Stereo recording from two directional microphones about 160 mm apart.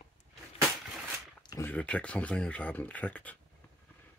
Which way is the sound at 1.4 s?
25° left (ahead or behind).